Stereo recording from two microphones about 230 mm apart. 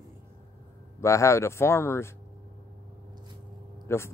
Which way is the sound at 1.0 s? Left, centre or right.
Centre.